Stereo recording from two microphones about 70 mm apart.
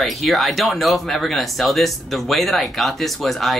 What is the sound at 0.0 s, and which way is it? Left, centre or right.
Speech, centre.